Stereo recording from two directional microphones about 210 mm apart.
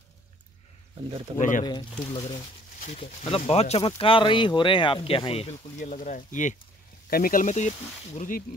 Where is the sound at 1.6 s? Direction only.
25° left (ahead or behind).